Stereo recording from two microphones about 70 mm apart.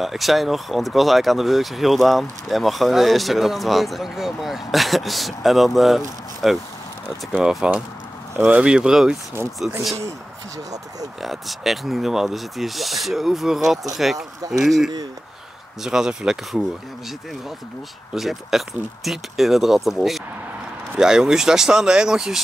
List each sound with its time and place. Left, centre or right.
0.0 s speech: centre
7.3 s speech: centre
11.2 s speech: centre
14.1 s speech: right
14.6 s speech: centre
18.1 s speech: centre